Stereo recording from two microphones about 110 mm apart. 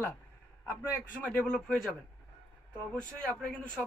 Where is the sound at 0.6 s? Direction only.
25° left (ahead or behind).